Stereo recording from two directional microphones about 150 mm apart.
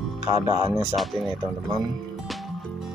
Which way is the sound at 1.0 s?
Centre (ahead or behind).